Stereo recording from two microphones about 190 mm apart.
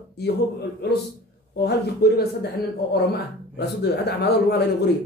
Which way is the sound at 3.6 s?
60° left (ahead or behind).